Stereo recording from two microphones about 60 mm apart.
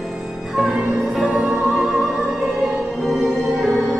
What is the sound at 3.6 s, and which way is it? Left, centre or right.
Music, centre.